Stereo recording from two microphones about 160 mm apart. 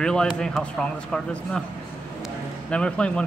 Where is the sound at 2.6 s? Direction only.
5° left (ahead or behind).